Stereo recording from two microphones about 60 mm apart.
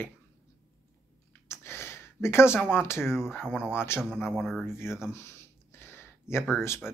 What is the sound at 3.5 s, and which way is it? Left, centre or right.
Speech, centre.